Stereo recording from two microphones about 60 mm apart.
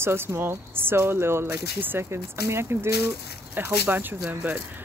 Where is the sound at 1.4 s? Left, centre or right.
Right.